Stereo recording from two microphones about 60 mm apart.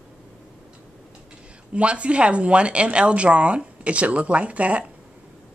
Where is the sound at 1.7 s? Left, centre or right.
Centre.